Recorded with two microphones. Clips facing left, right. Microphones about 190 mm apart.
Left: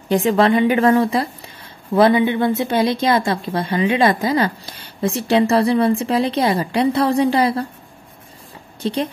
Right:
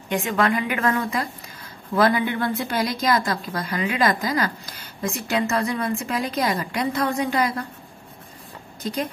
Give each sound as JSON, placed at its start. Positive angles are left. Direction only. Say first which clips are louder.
{"t": 0.1, "sound": "a woman's voice", "louder": "left 7 dB", "side_deg": 35}
{"t": 8.8, "sound": "a woman's voice", "louder": "left 6 dB", "side_deg": 30}